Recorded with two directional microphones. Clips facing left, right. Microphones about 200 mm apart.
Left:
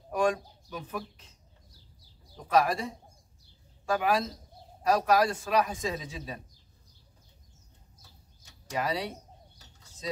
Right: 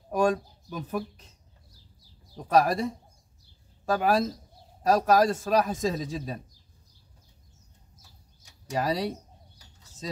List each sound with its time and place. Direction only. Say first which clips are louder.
0.1 s speech: right 3 dB; 40° right (ahead or behind)
2.4 s a man's voice: right 3 dB; 40° right (ahead or behind)
8.7 s a man's voice: right 4 dB; 40° right (ahead or behind)